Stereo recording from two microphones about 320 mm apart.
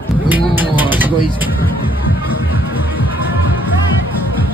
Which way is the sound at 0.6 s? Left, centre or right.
Centre.